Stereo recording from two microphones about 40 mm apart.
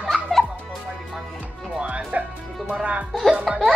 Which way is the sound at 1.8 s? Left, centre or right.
Right.